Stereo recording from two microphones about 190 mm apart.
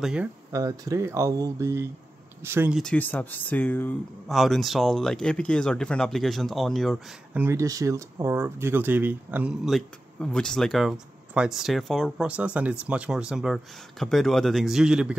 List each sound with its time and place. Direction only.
0.0 s speech: 5° right (ahead or behind)
0.5 s speech: 15° right (ahead or behind)
2.8 s speech: 5° left (ahead or behind)
7.3 s speech: 15° right (ahead or behind)